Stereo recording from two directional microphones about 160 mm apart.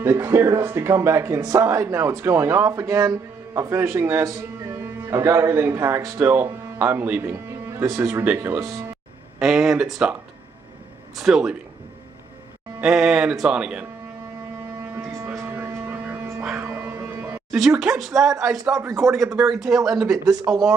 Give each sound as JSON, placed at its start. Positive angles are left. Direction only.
{"t": 0.0, "sound": "speech", "side_deg": -15}
{"t": 9.4, "sound": "speech", "side_deg": -5}
{"t": 11.1, "sound": "speech", "side_deg": 0}
{"t": 12.8, "sound": "speech", "side_deg": -5}
{"t": 15.0, "sound": "a sound", "side_deg": -15}
{"t": 17.5, "sound": "speech", "side_deg": 0}
{"t": 18.6, "sound": "speech", "side_deg": -20}
{"t": 19.3, "sound": "speech", "side_deg": -5}